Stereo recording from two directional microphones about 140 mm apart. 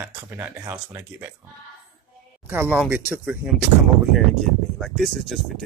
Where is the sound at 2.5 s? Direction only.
15° right (ahead or behind).